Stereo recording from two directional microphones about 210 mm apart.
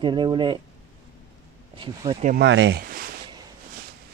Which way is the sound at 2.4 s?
60° right (ahead or behind).